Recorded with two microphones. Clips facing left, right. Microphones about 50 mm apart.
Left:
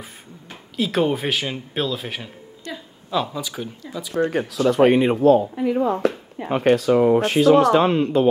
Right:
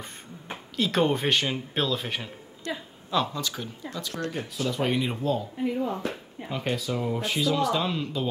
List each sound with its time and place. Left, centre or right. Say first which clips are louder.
0.7 s speech: left 3 dB; centre
4.3 s speech: left 9 dB; left
5.1 s speech: left 13 dB; left
5.7 s speech: left 9 dB; left
6.5 s speech: left 13 dB; left